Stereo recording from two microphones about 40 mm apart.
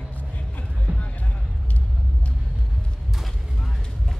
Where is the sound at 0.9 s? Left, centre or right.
Right.